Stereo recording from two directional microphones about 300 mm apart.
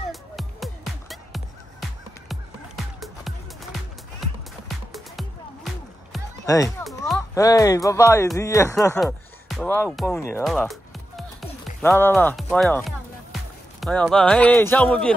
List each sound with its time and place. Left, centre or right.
0.1 s music: centre
6.4 s speech: centre
6.8 s music: centre
7.3 s speech: centre
10.1 s music: centre